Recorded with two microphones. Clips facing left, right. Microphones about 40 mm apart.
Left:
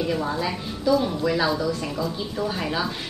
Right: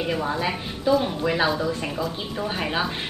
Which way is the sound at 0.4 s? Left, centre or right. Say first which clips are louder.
Right 1 dB; right.